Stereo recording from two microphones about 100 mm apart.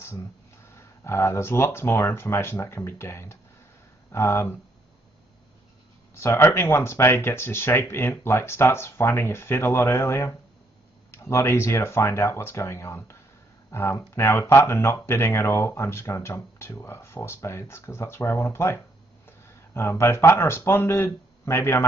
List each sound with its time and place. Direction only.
0.7 s speech: 25° left (ahead or behind)
6.1 s speech: 25° left (ahead or behind)